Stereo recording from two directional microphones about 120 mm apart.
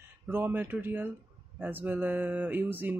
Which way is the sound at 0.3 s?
20° right (ahead or behind).